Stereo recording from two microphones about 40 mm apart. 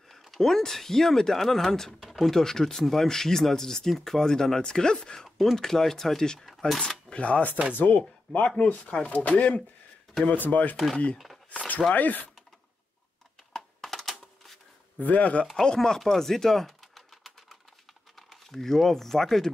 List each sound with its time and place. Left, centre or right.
0.2 s speech: centre; by 8.5 s left
8.5 s speech: left
10.3 s speech: left
11.5 s a sound: left
11.9 s speech: left
13.7 s a sound: centre
15.0 s speech: left
15.6 s speech: centre
16.0 s typing: centre
18.1 s speech: centre